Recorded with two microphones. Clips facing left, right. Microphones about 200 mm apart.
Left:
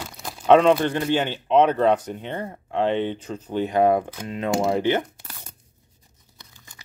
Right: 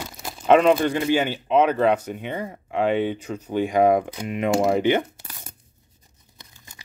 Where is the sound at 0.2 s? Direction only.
5° right (ahead or behind).